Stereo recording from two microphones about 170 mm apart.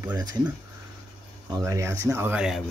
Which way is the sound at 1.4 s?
20° right (ahead or behind).